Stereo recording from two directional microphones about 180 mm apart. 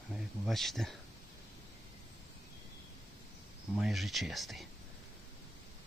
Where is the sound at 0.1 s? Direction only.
Centre (ahead or behind).